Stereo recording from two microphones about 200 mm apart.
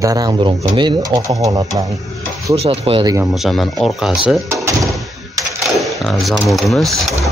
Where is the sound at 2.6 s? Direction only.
30° right (ahead or behind).